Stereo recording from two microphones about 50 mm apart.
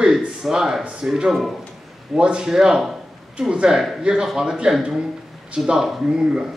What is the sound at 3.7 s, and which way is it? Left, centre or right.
Speech, centre.